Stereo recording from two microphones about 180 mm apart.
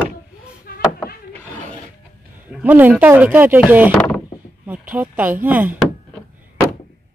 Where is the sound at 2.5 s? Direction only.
10° right (ahead or behind).